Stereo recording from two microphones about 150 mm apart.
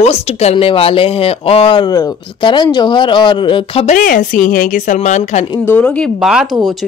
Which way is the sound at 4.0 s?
60° left (ahead or behind).